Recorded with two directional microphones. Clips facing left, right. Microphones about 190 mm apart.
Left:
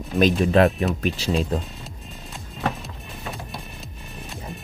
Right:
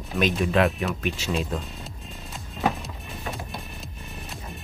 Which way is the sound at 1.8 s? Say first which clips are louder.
Even; centre (ahead or behind).